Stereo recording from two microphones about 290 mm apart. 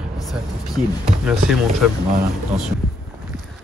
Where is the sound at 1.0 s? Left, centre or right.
Centre.